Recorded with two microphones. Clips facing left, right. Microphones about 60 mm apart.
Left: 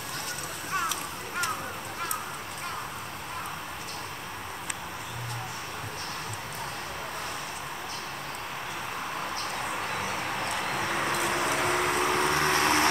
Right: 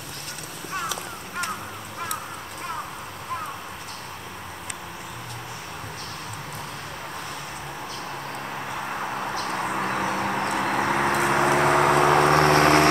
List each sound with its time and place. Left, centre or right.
9.8 s vehicle: right